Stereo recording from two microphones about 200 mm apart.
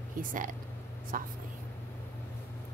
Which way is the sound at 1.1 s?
45° right (ahead or behind).